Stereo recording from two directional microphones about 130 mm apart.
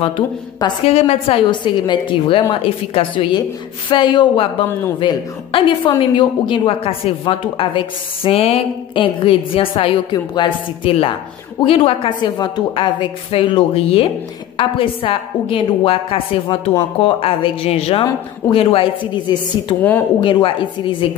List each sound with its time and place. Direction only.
0.8 s a woman's voice: 50° left (ahead or behind)